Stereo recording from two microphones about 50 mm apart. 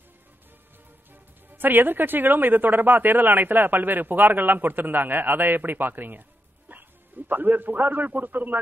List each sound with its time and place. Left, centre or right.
1.5 s speech: right
6.7 s bow-wow: right
7.2 s speech: right